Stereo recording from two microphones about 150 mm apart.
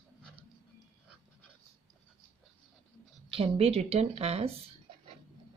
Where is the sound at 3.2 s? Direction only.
40° right (ahead or behind).